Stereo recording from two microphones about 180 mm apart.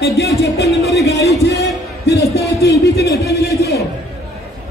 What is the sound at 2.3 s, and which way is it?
Speech, 65° left (ahead or behind).